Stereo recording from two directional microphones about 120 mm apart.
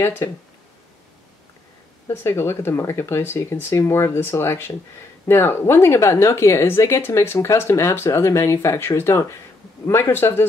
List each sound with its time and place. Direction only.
0.0 s speech: 20° left (ahead or behind)
2.0 s speech: 20° left (ahead or behind)